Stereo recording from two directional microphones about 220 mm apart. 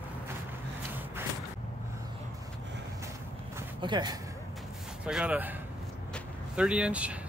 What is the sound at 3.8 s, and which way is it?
Speech, 20° right (ahead or behind).